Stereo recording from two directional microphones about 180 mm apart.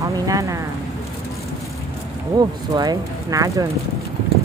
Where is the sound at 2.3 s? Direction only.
20° right (ahead or behind).